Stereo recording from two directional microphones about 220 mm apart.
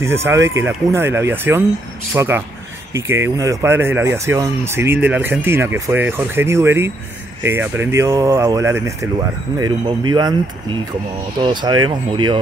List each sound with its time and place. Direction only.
0.0 s speech: 10° right (ahead or behind)